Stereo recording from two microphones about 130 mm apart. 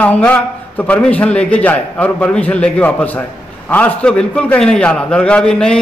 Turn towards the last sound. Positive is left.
turn(degrees=5)  # may be behind; listen again after turning